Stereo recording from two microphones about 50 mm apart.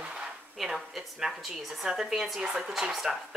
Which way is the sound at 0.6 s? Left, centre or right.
Centre.